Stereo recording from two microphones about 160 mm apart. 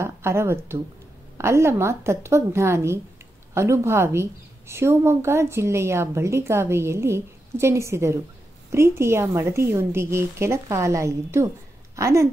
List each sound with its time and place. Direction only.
0.0 s a woman's voice: 15° right (ahead or behind)